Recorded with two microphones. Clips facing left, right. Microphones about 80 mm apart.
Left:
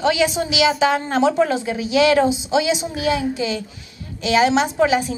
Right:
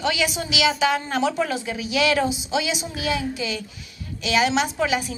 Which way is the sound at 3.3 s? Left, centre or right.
Left.